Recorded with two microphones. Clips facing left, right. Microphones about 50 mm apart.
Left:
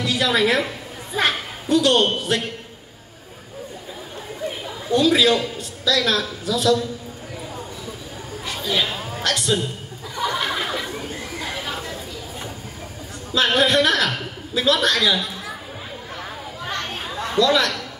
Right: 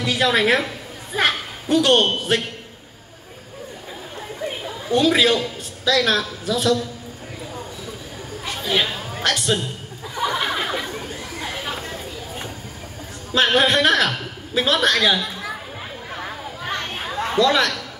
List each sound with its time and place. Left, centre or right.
0.0 s a woman's voice: right
4.9 s a woman's voice: right
8.6 s speech: right
10.1 s a sound: centre
13.3 s a woman's voice: right
17.3 s a man's voice: right